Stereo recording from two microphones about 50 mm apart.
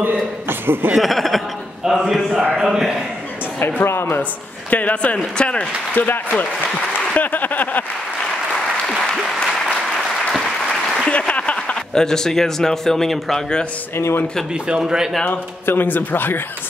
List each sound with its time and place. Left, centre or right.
0.5 s speech: right
0.9 s a man's voice: centre
3.5 s speech: left
3.8 s a man's voice: left
4.2 s speech: left
5.9 s speech: left
7.2 s a sound: left
11.1 s a man's voice: left; by 13.4 s centre
13.9 s speech: left
15.6 s a man's voice: left